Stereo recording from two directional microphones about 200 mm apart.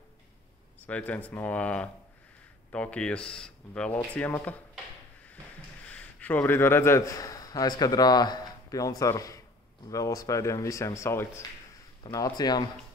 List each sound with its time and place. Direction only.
0.8 s speech: 5° left (ahead or behind)
5.9 s a man's voice: 5° left (ahead or behind)